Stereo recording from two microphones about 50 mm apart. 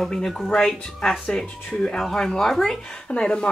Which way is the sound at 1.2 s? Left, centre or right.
Left.